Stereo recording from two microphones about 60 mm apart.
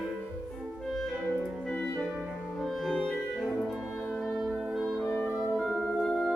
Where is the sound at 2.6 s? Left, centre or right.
Centre.